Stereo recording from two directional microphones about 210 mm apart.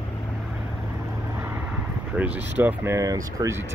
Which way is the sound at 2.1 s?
10° right (ahead or behind).